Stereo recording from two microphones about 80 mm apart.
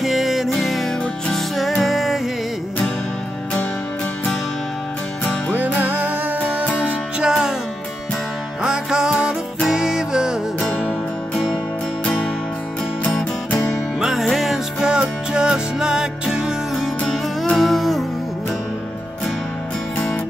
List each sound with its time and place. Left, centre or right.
0.0 s music: centre
5.5 s music: right
8.6 s music: centre
13.9 s music: centre